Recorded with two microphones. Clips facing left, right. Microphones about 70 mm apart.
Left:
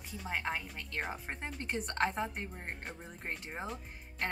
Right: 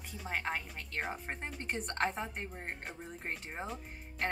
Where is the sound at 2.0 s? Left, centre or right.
Centre.